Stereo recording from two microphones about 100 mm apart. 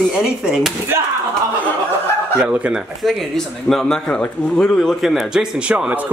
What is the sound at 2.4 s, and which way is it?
Speech, 10° right (ahead or behind).